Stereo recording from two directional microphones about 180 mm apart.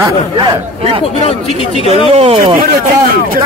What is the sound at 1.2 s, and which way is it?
Speech, 35° left (ahead or behind).